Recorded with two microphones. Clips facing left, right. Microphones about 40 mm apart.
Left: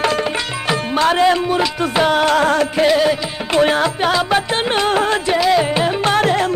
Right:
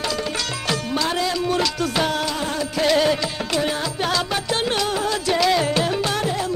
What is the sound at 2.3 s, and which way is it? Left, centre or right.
Music, left.